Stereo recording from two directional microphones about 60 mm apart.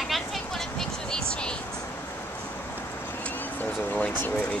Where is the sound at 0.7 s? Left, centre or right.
Centre.